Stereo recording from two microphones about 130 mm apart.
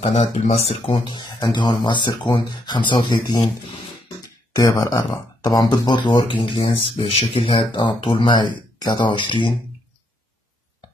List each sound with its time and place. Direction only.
0.0 s speech: 50° left (ahead or behind); by 3.4 s 30° left (ahead or behind)
4.6 s speech: 30° left (ahead or behind)
6.4 s speech: 45° left (ahead or behind)